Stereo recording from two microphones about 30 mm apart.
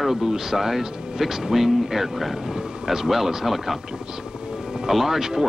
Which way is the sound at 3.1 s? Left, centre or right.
Centre.